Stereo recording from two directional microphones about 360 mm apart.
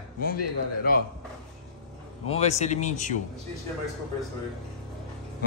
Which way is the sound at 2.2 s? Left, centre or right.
Centre.